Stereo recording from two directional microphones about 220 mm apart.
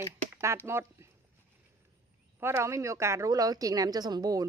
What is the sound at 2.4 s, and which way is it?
A woman's voice, 10° right (ahead or behind).